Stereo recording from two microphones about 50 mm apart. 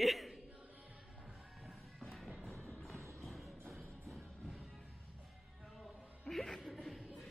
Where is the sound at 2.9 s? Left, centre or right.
Right.